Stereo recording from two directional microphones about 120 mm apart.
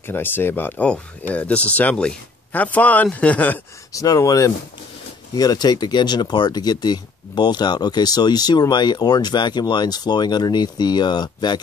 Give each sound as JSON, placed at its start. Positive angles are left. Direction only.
{"t": 0.0, "sound": "speech", "side_deg": 15}
{"t": 3.9, "sound": "speech", "side_deg": 30}